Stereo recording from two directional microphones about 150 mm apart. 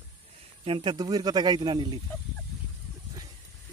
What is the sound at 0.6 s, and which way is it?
Speech, 35° right (ahead or behind).